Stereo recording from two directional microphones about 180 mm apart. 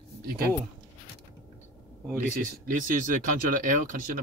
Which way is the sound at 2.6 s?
50° right (ahead or behind).